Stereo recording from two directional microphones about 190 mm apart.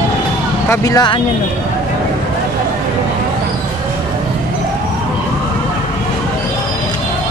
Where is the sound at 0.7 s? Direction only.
20° left (ahead or behind).